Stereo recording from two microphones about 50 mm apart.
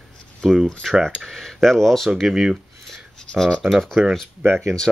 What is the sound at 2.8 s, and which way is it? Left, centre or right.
Rub, centre.